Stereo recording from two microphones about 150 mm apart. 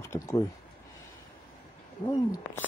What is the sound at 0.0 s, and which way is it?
Speech, 20° left (ahead or behind).